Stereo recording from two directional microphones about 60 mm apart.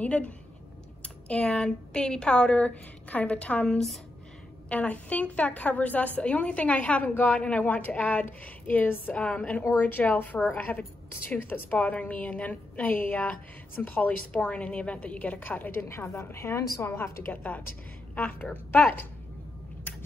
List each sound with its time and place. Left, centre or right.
0.0 s a woman's voice: left
9.1 s a woman's voice: centre
9.7 s a woman's voice: left
15.8 s a woman's voice: left